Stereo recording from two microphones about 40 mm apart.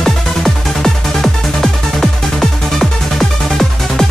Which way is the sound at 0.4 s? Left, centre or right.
Centre.